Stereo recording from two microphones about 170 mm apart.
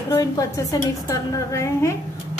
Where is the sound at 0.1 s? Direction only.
20° left (ahead or behind).